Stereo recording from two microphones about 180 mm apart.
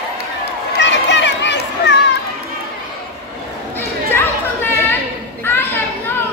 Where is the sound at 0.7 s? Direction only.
80° left.